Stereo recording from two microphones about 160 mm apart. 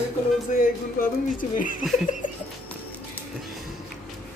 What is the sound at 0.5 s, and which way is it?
Speech, 55° left (ahead or behind).